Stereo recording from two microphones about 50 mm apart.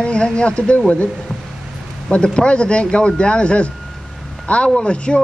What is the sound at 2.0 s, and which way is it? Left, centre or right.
Speech, left.